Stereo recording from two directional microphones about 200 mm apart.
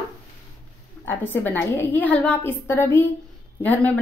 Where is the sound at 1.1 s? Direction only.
10° left (ahead or behind).